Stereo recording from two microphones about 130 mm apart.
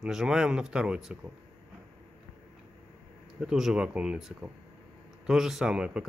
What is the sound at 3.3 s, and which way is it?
Speech, 5° right (ahead or behind).